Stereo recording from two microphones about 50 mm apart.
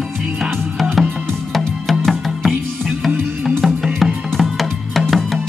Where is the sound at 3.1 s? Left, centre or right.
Right.